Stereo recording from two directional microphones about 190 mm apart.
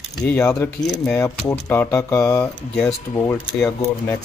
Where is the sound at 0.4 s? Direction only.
15° left (ahead or behind).